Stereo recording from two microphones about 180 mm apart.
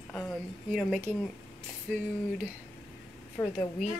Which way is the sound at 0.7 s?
Centre (ahead or behind).